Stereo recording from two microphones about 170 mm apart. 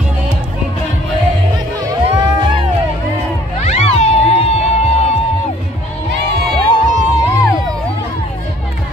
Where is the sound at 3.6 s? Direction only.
40° left (ahead or behind).